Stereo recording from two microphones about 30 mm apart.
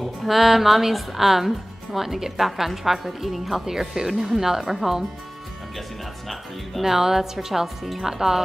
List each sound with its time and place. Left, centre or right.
0.3 s speech: centre
6.8 s speech: centre
8.1 s speech: centre